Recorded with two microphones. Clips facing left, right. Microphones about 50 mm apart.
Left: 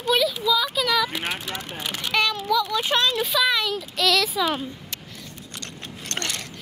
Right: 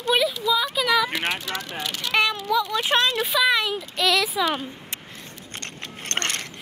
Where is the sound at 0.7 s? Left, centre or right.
Centre.